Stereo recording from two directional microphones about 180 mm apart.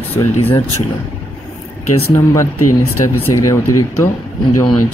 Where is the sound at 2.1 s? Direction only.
15° left (ahead or behind).